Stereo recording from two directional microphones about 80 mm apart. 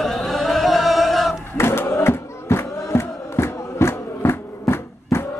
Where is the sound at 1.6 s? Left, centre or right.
Left.